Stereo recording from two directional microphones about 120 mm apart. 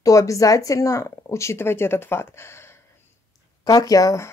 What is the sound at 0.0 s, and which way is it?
A woman's voice, 25° left (ahead or behind).